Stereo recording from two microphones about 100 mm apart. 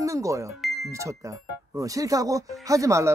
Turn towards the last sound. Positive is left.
turn(degrees=-30)  # may be behind; listen again after turning